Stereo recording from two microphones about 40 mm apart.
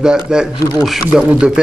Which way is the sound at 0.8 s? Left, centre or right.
Centre.